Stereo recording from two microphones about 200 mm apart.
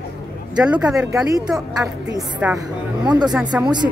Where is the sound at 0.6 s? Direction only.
5° right (ahead or behind).